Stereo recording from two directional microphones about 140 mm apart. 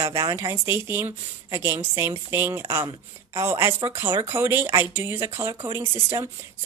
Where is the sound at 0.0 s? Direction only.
25° right (ahead or behind).